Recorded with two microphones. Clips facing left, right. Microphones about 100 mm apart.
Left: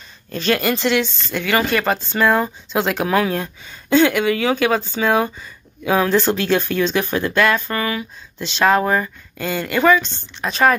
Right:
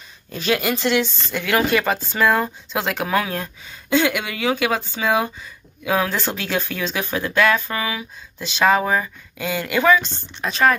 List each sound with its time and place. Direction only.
0.3 s speech: 5° right (ahead or behind)